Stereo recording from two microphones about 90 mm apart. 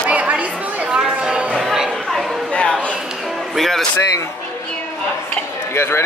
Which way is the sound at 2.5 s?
10° left (ahead or behind).